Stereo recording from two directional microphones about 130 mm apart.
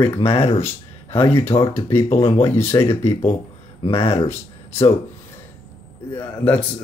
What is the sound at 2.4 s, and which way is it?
Speech, 20° left (ahead or behind).